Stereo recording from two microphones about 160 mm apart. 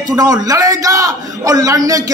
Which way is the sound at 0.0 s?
25° right (ahead or behind).